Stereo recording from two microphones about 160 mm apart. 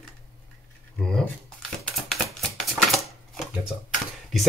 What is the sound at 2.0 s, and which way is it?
Typewriter, centre (ahead or behind).